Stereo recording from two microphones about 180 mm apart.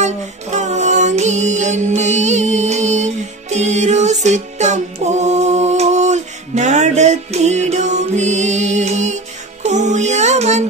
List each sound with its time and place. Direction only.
0.0 s music: 40° right (ahead or behind)